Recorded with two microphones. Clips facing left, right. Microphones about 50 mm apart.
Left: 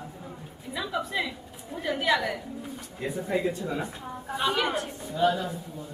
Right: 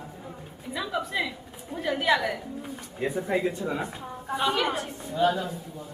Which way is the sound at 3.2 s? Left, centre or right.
Centre.